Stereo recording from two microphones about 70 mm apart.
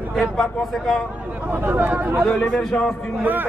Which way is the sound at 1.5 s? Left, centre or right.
Right.